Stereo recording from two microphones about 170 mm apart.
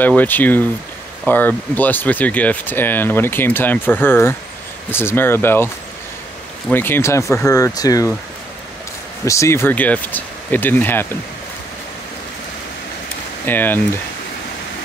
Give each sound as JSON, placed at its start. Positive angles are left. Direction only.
{"t": 0.0, "sound": "speech", "side_deg": 10}
{"t": 6.7, "sound": "speech", "side_deg": 10}
{"t": 9.2, "sound": "speech", "side_deg": 15}
{"t": 13.5, "sound": "speech", "side_deg": 10}